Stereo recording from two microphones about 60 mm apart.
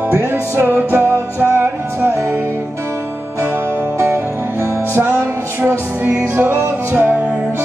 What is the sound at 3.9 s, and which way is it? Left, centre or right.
Music, right.